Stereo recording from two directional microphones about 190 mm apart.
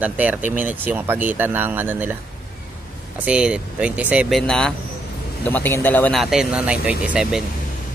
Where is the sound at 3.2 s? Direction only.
5° right (ahead or behind).